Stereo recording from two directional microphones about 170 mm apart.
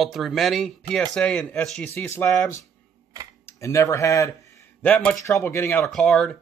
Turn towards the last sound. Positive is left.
turn(degrees=5)  # may be behind; listen again after turning